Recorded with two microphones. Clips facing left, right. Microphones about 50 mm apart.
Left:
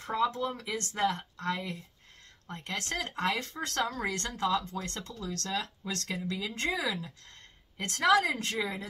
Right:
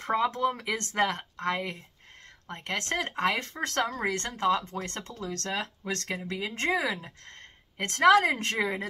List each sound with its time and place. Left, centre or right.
0.0 s speech: right